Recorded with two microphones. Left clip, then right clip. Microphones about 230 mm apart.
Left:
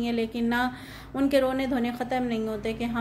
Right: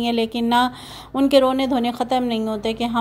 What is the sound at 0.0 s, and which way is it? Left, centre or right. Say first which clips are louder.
A woman's voice: right 7 dB; right.